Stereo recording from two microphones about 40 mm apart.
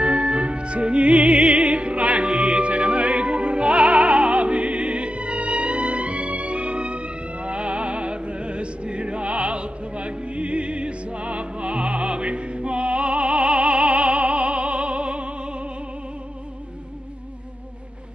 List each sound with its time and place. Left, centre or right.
0.0 s music: right